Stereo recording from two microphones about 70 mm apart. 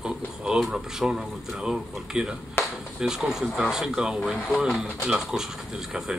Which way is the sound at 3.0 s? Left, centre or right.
Centre.